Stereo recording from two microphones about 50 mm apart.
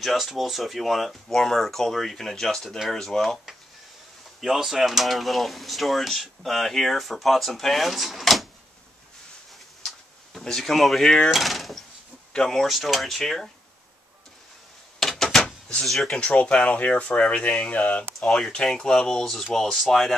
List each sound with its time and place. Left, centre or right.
0.0 s speech: centre
10.4 s speech: centre
15.0 s a sound: centre
15.8 s speech: centre
16.2 s speech: left
18.2 s speech: centre